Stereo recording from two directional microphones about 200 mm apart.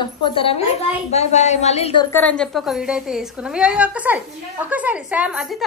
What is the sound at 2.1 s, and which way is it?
A woman's voice, 5° left (ahead or behind).